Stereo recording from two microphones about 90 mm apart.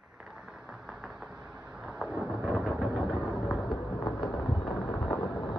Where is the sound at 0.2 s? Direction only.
5° right (ahead or behind).